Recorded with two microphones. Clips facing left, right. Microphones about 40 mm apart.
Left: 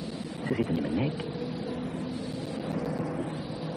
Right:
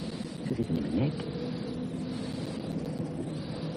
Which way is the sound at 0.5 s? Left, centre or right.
Left.